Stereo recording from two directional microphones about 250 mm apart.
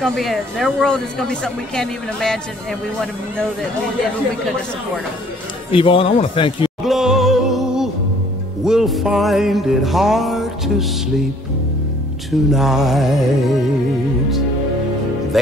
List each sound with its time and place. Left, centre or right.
0.0 s speech: centre
5.7 s speech: left
6.8 s music: centre
8.6 s speech: centre
12.3 s speech: centre